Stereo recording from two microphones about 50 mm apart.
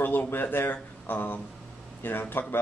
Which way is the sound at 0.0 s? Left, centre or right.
Left.